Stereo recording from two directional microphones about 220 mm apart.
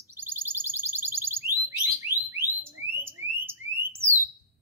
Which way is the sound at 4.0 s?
10° right (ahead or behind).